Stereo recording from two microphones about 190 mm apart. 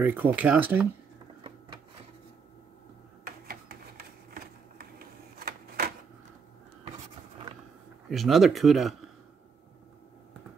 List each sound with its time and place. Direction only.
0.0 s speech: 10° right (ahead or behind)
3.3 s a sound: 50° right (ahead or behind)
8.1 s speech: centre (ahead or behind)